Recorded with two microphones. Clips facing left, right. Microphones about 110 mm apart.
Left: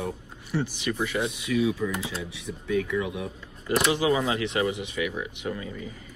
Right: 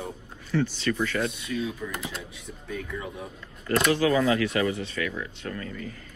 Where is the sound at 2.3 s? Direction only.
85° left.